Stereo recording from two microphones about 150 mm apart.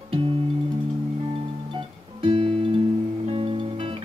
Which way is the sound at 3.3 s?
40° right (ahead or behind).